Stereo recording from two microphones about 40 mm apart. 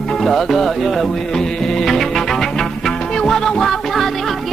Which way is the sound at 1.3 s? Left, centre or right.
Centre.